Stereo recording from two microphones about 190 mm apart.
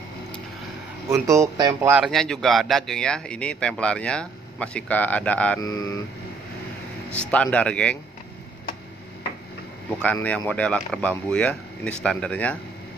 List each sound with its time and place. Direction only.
1.1 s speech: 15° right (ahead or behind)
2.0 s speech: centre (ahead or behind)
5.6 s speech: 20° left (ahead or behind)
7.2 s speech: 5° left (ahead or behind)
10.2 s speech: 5° left (ahead or behind)